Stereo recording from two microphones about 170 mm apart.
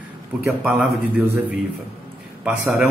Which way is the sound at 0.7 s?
10° right (ahead or behind).